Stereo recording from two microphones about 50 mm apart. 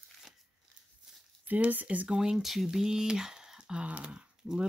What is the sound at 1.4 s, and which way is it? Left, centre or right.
Speech, right.